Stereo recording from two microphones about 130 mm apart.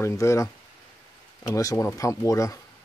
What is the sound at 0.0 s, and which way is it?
Speech, 20° left (ahead or behind).